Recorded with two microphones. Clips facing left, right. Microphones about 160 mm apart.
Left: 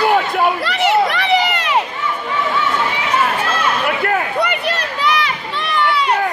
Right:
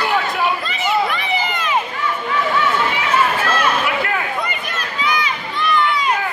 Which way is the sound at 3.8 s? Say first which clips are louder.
Left 3 dB; 50° left (ahead or behind).